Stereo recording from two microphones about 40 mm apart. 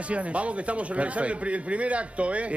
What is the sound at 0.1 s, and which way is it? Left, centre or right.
A man's voice, right.